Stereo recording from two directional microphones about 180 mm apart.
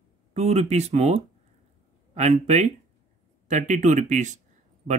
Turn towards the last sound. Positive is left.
turn(degrees=-45)  # may be behind; listen again after turning